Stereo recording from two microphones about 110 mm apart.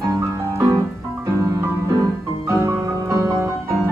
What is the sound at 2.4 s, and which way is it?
Music, 30° right (ahead or behind).